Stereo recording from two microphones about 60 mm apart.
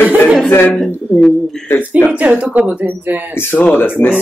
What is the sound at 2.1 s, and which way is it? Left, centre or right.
Speech, right.